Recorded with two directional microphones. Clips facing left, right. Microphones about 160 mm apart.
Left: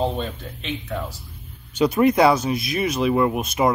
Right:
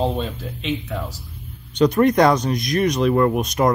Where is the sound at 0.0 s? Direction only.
Centre (ahead or behind).